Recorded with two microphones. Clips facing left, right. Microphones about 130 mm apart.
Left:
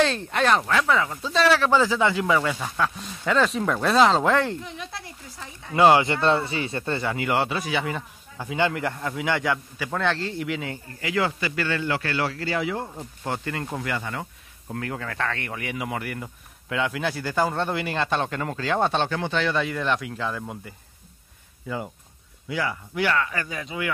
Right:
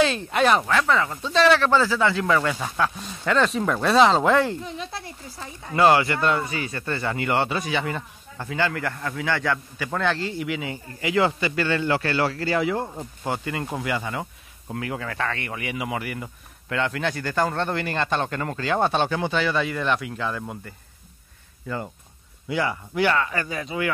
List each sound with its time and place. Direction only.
0.0 s a man's voice: 5° right (ahead or behind); by 2.5 s 10° left (ahead or behind)
2.6 s a man's voice: centre (ahead or behind)
4.6 s speech: 25° right (ahead or behind)
5.8 s a man's voice: 15° left (ahead or behind)
7.1 s a man's voice: 5° left (ahead or behind)
8.5 s a man's voice: 20° left (ahead or behind)
9.8 s a man's voice: centre (ahead or behind)
11.0 s a man's voice: 20° right (ahead or behind); by 12.8 s 45° right (ahead or behind)
13.0 s a man's voice: 10° right (ahead or behind)
21.6 s a man's voice: 5° left (ahead or behind)
22.5 s a man's voice: 25° right (ahead or behind)